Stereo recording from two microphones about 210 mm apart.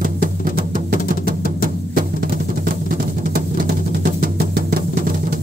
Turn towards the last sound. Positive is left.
turn(degrees=-45)  # may be behind; listen again after turning